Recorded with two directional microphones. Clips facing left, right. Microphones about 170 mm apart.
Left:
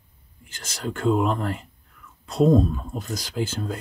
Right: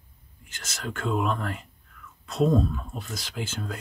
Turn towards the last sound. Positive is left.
turn(degrees=35)  # may be behind; listen again after turning